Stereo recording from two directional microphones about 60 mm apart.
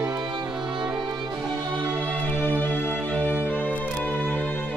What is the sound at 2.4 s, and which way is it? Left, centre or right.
Music, left.